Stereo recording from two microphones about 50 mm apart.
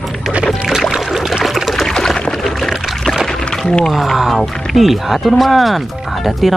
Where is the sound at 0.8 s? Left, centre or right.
Centre.